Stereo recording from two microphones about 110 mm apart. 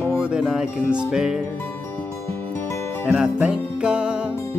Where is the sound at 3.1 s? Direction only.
10° right (ahead or behind).